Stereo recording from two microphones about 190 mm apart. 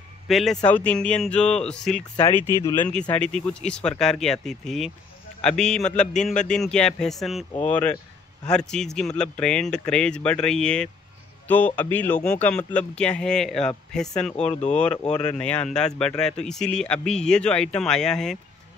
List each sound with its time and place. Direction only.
0.3 s speech: centre (ahead or behind)
14.5 s speech: 35° left (ahead or behind)
15.3 s speech: 5° left (ahead or behind)